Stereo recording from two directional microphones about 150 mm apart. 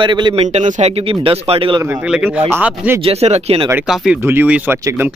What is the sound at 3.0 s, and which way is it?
Speech, 45° right (ahead or behind).